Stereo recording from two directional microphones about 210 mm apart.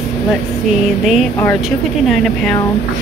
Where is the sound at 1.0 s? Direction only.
Centre (ahead or behind).